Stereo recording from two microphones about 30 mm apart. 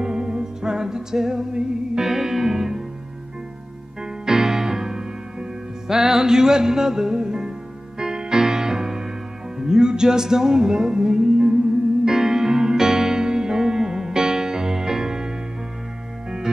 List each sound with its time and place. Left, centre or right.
0.0 s music: right
4.0 s music: centre